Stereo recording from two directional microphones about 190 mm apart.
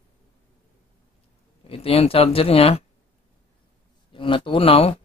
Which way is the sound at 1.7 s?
30° left (ahead or behind).